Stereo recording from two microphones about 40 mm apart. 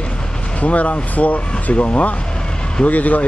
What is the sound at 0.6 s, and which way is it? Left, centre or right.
Speech, left.